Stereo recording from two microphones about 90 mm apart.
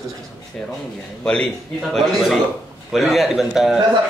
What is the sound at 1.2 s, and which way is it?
Speech, 10° left (ahead or behind).